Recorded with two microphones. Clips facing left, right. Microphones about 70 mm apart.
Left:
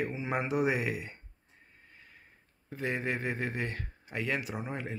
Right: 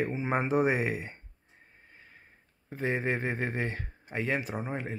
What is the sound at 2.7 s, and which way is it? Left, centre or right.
Speech, right.